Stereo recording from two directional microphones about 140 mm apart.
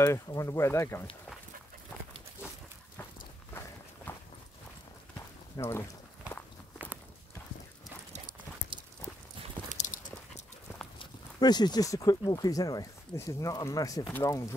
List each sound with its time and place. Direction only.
0.0 s speech: 20° left (ahead or behind)
3.5 s walk: 20° left (ahead or behind)
5.6 s speech: 20° left (ahead or behind)
9.8 s a sound: 60° left (ahead or behind)
11.0 s speech: 30° left (ahead or behind)